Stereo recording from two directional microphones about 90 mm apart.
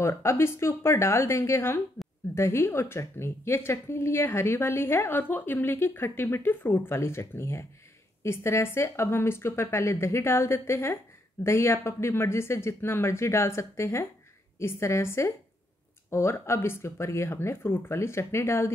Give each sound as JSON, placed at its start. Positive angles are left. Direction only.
{"t": 0.0, "sound": "a woman's voice", "side_deg": 30}